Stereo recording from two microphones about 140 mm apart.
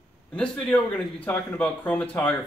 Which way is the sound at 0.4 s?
10° left (ahead or behind).